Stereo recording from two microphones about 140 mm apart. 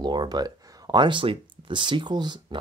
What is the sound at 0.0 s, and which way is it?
Speech, 30° right (ahead or behind).